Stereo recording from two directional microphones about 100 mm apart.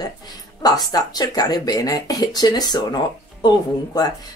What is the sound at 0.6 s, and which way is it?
Speech, 40° left (ahead or behind).